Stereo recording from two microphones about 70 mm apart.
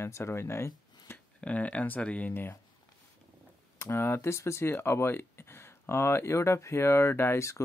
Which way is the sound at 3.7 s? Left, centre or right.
Left.